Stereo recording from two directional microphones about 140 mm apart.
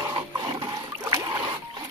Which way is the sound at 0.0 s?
30° right (ahead or behind).